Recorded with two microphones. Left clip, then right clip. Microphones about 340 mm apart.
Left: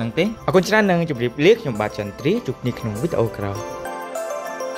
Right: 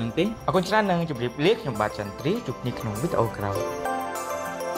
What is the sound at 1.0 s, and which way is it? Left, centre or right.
Speech, left.